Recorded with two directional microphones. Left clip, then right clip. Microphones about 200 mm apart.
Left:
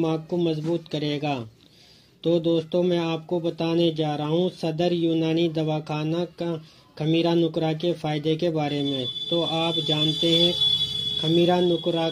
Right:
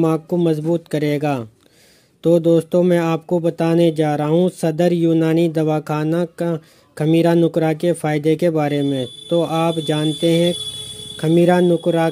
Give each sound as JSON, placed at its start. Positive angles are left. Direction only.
{"t": 0.0, "sound": "speech", "side_deg": -45}